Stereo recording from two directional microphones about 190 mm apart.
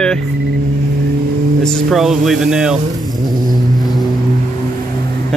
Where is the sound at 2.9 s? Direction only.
20° right (ahead or behind).